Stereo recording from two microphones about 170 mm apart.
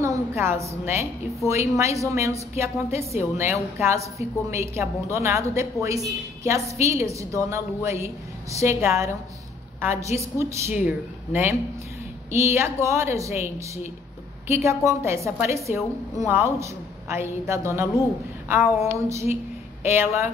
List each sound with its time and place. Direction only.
0.0 s a woman's voice: 15° right (ahead or behind)
14.5 s a woman's voice: 15° right (ahead or behind)